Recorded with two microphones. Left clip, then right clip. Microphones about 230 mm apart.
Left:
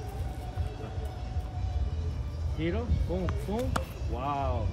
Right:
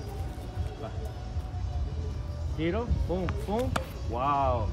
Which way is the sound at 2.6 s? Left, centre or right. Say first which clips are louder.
Right 2 dB; centre.